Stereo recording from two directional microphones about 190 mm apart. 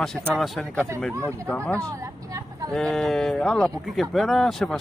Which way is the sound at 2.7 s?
Centre (ahead or behind).